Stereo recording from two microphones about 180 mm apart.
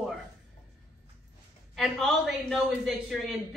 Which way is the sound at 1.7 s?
Centre (ahead or behind).